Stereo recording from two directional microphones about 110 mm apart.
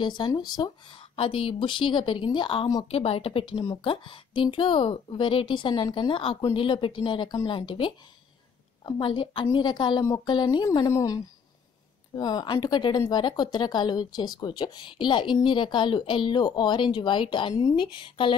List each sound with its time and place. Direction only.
0.0 s speech: 45° left (ahead or behind)
1.1 s speech: 55° left (ahead or behind)
2.8 s a woman's voice: 60° left (ahead or behind)